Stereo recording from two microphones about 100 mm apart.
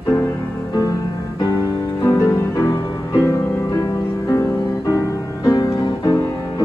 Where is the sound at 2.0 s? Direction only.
20° left (ahead or behind).